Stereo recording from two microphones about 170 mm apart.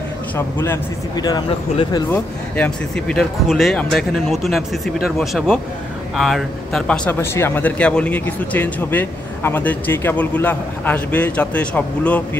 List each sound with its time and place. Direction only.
0.4 s a man's voice: 15° left (ahead or behind)
2.1 s speech: 5° left (ahead or behind)